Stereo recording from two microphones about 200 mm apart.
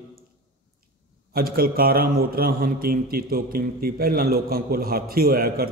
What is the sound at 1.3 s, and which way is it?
A man's voice, 45° right (ahead or behind).